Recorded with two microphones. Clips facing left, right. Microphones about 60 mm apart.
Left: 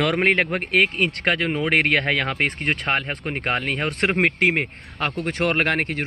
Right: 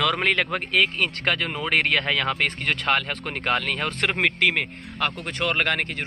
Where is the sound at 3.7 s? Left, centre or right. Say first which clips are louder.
Left 3 dB; left.